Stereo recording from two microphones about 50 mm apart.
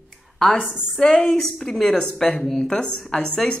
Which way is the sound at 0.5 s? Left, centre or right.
Centre.